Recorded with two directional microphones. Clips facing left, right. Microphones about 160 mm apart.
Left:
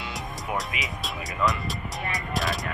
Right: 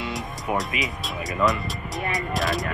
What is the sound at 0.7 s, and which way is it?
Speech, 15° left (ahead or behind).